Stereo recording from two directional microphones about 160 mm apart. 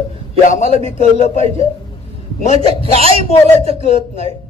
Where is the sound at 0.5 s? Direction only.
45° left (ahead or behind).